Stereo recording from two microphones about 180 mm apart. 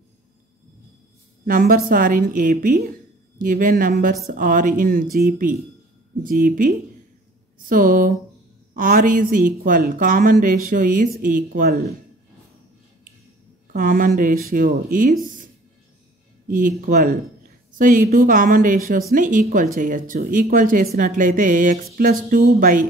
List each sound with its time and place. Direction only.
1.4 s speech: 50° right (ahead or behind)
13.7 s speech: 50° right (ahead or behind)